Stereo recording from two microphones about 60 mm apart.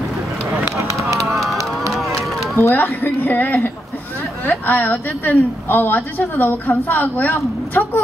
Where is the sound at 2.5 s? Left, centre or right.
Left.